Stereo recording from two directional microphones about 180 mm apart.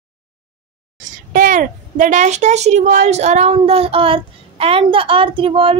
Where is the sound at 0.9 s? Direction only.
50° right (ahead or behind).